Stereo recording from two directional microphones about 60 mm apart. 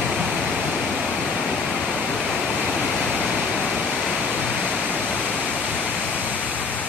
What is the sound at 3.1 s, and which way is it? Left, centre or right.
Waterfall, centre.